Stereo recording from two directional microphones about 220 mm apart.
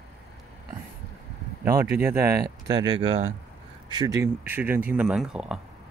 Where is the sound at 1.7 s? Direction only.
45° right (ahead or behind).